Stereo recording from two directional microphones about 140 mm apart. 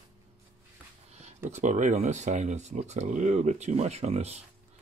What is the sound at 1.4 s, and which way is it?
Speech, 55° right (ahead or behind).